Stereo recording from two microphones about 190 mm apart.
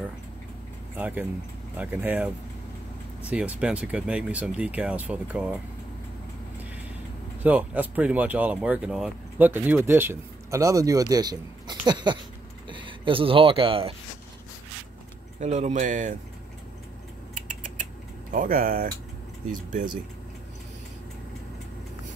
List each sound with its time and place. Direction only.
0.9 s speech: 10° right (ahead or behind)
7.4 s speech: 10° right (ahead or behind); by 13.9 s 30° right (ahead or behind)
15.4 s speech: 35° right (ahead or behind)
17.3 s typing: 45° right (ahead or behind)
18.3 s speech: 45° right (ahead or behind)